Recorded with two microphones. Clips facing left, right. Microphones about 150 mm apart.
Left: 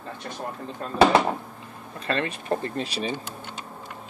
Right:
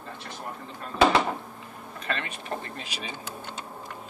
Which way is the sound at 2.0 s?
35° left (ahead or behind).